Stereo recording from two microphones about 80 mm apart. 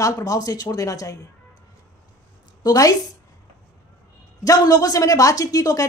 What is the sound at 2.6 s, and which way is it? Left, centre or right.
Speech, left.